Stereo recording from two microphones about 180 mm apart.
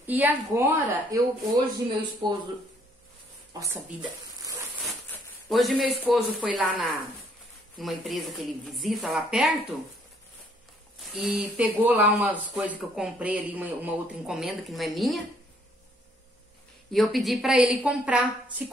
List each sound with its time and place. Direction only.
0.0 s a woman's voice: 10° right (ahead or behind)
3.5 s speech: 20° right (ahead or behind)
4.8 s speech: centre (ahead or behind)
11.0 s speech: centre (ahead or behind)
16.9 s speech: centre (ahead or behind)